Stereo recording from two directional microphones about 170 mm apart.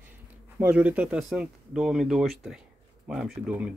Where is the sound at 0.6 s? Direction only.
10° right (ahead or behind).